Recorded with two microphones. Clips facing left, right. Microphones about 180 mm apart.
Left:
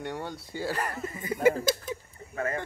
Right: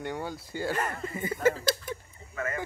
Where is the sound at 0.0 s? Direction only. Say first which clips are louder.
Right 1 dB; centre (ahead or behind).